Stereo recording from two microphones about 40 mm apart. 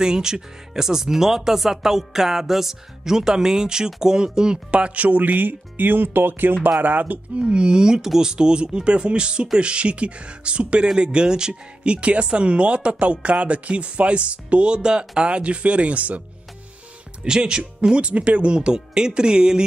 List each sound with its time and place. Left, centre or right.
0.0 s speech: centre; by 6.7 s right
6.8 s speech: right
7.3 s speech: right
17.2 s speech: right